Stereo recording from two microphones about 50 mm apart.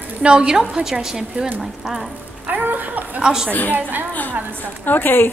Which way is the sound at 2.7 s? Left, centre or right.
Right.